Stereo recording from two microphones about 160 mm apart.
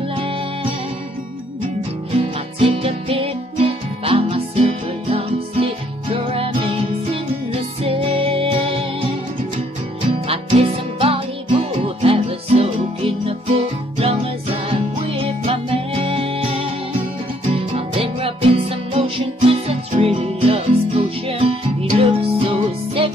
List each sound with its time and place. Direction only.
0.1 s music: 35° right (ahead or behind)
2.1 s music: 35° right (ahead or behind)
10.1 s music: 35° right (ahead or behind)
17.7 s music: 35° right (ahead or behind)